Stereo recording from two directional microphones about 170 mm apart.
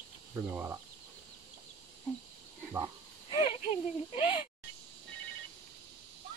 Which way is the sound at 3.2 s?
30° left (ahead or behind).